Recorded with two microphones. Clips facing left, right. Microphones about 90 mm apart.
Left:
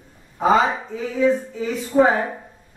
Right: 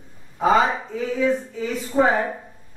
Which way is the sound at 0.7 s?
10° left (ahead or behind).